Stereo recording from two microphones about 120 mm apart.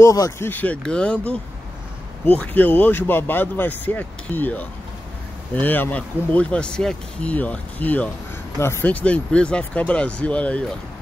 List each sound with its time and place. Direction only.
0.0 s speech: 25° left (ahead or behind)
0.5 s speech: 15° left (ahead or behind)